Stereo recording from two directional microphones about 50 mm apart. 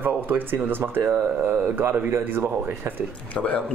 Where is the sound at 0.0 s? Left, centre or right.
Right.